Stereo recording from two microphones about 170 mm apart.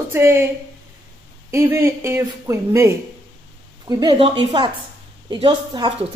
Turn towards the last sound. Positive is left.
turn(degrees=-30)  # may be behind; listen again after turning